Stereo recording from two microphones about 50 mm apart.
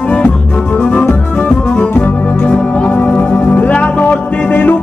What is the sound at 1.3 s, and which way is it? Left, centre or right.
Music, left.